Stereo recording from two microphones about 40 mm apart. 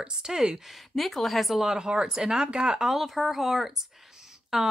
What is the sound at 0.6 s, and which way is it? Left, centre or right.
A woman's voice, centre.